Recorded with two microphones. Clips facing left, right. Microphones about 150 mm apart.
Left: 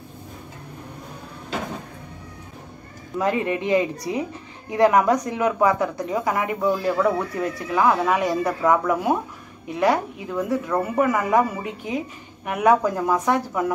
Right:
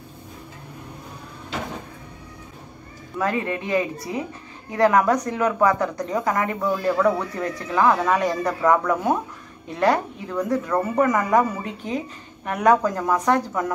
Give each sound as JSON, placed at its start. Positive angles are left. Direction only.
{"t": 3.2, "sound": "a woman's voice", "side_deg": 20}